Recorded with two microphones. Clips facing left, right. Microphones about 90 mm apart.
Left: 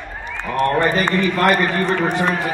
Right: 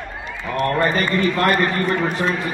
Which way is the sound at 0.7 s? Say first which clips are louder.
Even; 25° left (ahead or behind).